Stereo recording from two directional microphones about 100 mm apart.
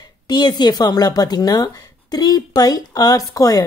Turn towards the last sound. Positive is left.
turn(degrees=40)  # may be behind; listen again after turning